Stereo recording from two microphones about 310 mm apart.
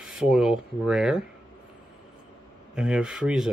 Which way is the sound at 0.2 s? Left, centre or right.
Centre.